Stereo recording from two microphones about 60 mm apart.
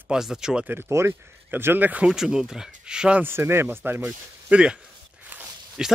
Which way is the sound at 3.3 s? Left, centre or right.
Right.